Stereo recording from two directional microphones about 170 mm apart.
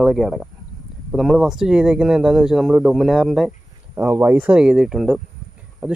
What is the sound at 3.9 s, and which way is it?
Speech, 10° right (ahead or behind).